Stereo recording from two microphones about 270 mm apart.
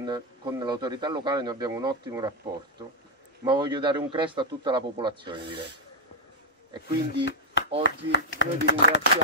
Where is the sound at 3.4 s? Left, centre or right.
Centre.